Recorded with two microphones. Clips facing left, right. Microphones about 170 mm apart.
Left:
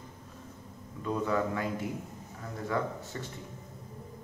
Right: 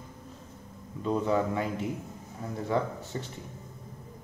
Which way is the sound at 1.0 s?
25° right (ahead or behind).